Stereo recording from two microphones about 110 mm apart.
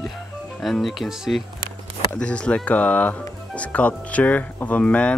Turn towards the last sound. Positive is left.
turn(degrees=10)  # may be behind; listen again after turning